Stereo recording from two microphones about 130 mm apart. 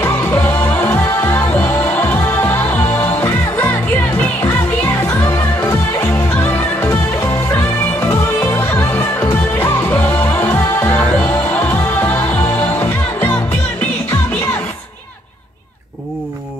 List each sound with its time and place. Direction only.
0.0 s music: 15° left (ahead or behind)
4.8 s music: 25° left (ahead or behind)